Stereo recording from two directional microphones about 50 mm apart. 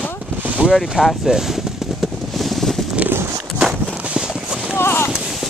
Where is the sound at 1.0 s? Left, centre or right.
Centre.